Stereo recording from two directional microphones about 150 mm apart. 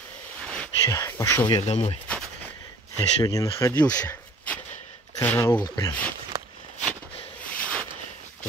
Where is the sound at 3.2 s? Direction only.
20° left (ahead or behind).